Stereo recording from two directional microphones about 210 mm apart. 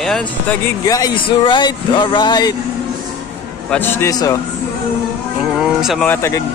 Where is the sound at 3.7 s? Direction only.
10° left (ahead or behind).